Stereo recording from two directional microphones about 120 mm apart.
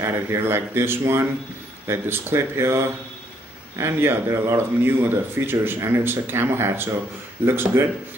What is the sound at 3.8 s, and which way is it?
A man's voice, 20° right (ahead or behind).